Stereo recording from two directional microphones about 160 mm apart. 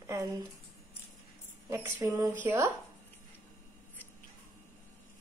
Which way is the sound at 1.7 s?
15° right (ahead or behind).